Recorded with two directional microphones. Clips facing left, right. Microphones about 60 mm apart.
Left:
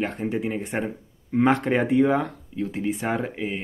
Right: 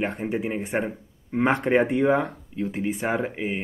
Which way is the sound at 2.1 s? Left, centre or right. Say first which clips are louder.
Right 1 dB; centre.